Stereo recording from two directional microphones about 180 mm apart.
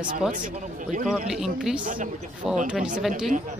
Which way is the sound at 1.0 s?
5° right (ahead or behind).